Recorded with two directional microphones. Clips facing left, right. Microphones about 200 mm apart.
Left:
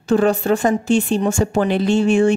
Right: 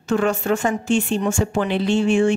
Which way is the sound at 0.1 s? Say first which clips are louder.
Left 4 dB; 35° left (ahead or behind).